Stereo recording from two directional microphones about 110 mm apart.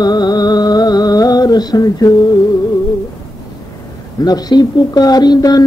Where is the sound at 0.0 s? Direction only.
40° left (ahead or behind).